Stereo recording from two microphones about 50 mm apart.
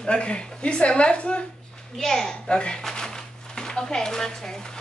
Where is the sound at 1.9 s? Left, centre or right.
Centre.